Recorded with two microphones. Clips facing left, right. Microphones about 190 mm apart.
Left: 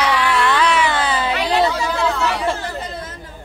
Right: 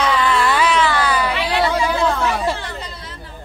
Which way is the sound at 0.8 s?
25° left (ahead or behind).